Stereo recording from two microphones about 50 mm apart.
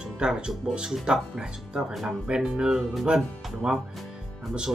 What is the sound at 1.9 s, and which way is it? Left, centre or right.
Speech, centre.